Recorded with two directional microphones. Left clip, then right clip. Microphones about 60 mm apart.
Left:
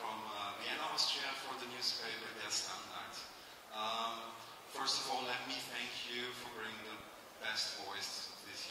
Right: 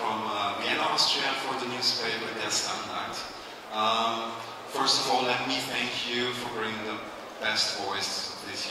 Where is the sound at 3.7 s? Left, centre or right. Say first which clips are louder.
Right 14 dB; left.